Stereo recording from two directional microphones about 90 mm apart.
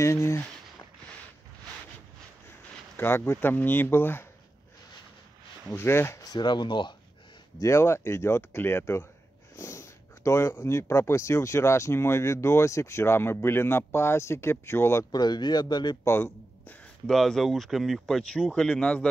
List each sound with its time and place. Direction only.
0.0 s speech: 30° left (ahead or behind)
3.0 s speech: 25° left (ahead or behind)
5.7 s speech: 25° left (ahead or behind); by 7.0 s 60° left (ahead or behind)
7.5 s speech: 35° left (ahead or behind)
15.0 s speech: 50° left (ahead or behind)
16.0 s a man's voice: 30° left (ahead or behind)
17.0 s speech: 5° left (ahead or behind)